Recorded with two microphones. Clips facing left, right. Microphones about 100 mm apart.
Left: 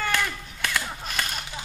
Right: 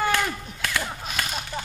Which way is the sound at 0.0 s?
10° right (ahead or behind).